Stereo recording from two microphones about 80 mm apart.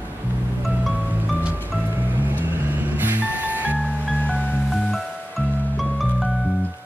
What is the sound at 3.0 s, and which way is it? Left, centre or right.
Music, right.